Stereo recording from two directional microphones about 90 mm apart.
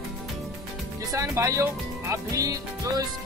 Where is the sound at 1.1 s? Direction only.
35° right (ahead or behind).